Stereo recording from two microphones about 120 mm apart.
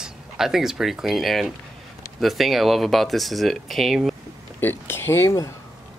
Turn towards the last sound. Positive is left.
turn(degrees=20)  # may be behind; listen again after turning